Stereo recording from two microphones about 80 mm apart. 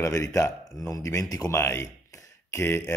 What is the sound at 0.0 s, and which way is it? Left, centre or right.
Speech, left.